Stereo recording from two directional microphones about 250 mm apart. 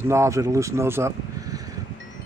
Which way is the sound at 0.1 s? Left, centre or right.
Centre.